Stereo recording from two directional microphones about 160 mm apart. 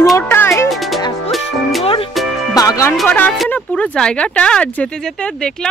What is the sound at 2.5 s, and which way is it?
Speech, 20° left (ahead or behind).